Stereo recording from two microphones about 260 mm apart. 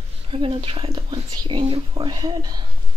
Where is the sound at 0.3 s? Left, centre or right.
Right.